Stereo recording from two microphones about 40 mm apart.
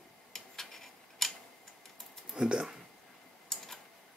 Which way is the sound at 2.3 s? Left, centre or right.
Centre.